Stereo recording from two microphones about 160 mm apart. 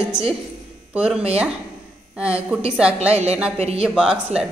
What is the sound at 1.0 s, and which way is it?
Speech, 5° right (ahead or behind).